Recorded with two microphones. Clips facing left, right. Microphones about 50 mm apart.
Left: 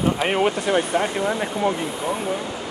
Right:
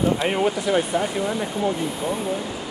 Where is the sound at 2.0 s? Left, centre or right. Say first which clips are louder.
Left 1 dB; left.